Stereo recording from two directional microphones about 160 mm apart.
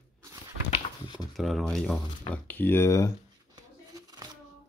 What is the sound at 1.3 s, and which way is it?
Speech, centre (ahead or behind).